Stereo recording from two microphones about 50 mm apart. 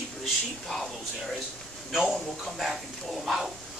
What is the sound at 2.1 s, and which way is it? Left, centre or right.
Speech, centre.